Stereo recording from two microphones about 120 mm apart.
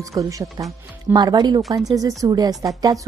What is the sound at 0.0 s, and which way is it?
Speech, 30° right (ahead or behind).